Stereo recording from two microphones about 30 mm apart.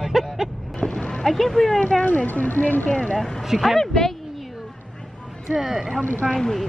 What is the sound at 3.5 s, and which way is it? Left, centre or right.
Speech, centre.